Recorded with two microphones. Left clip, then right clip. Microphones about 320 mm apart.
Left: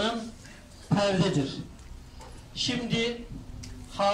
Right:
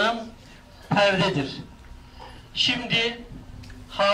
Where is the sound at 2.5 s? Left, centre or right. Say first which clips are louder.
Right 8 dB; right.